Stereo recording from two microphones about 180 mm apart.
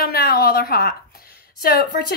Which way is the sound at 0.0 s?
55° left (ahead or behind).